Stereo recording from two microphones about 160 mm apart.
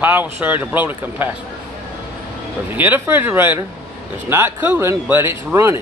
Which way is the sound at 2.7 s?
10° right (ahead or behind).